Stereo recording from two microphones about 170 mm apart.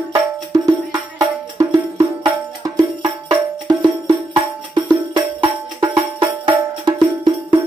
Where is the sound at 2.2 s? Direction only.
25° right (ahead or behind).